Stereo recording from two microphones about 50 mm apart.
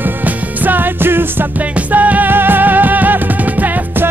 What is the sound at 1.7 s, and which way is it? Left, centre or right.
Music, right.